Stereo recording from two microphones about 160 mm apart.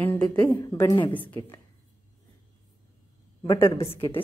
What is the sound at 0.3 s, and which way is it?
A woman's voice, 10° left (ahead or behind).